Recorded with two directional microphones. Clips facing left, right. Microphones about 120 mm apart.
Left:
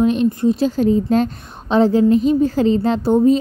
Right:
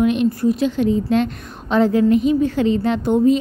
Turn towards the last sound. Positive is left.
turn(degrees=35)  # may be behind; listen again after turning